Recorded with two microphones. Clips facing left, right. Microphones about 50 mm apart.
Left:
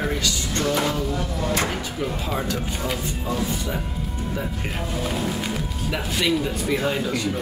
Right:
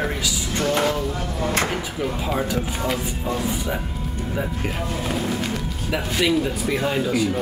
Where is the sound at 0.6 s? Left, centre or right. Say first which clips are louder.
Right 2 dB; right.